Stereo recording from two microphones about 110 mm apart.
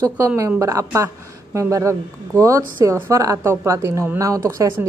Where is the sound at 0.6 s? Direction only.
30° right (ahead or behind).